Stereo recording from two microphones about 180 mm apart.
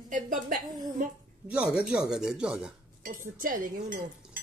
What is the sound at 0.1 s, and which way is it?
Dishes, 45° right (ahead or behind).